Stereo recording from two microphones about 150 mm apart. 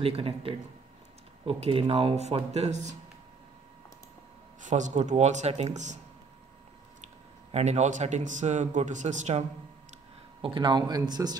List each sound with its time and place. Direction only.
0.0 s a man's voice: 40° right (ahead or behind)
4.6 s a man's voice: 55° right (ahead or behind)
7.5 s a man's voice: 50° right (ahead or behind)
10.4 s speech: 30° right (ahead or behind)